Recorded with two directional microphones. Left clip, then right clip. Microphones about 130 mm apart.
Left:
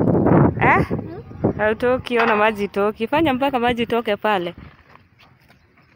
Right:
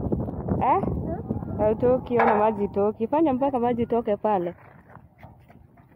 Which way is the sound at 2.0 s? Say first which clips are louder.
Left 3 dB; 15° left (ahead or behind).